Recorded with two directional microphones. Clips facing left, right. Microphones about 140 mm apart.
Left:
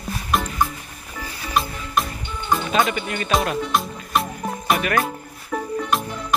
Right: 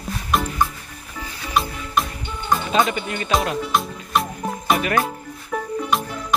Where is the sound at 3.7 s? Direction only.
Centre (ahead or behind).